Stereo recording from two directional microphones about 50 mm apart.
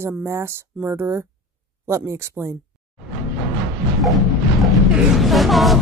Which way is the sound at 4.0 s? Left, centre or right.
Centre.